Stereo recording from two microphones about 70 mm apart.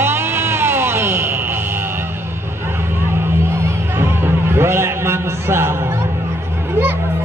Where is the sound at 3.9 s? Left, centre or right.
Right.